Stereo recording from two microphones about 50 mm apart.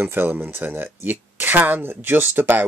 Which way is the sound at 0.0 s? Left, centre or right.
Right.